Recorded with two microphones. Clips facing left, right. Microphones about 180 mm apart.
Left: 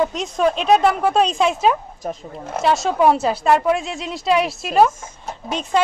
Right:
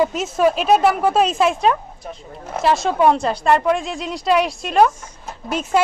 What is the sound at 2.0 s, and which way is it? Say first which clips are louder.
Speech: left 7 dB; 45° left (ahead or behind).